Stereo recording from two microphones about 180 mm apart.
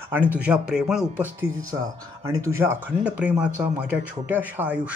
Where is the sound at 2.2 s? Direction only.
15° right (ahead or behind).